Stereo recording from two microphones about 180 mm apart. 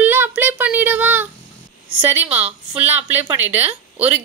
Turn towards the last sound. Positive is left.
turn(degrees=-10)  # may be behind; listen again after turning